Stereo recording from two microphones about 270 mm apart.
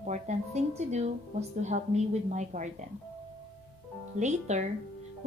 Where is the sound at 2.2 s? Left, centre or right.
Right.